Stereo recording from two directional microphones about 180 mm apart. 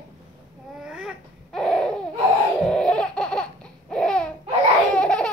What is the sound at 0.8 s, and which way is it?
Babbling, 5° right (ahead or behind).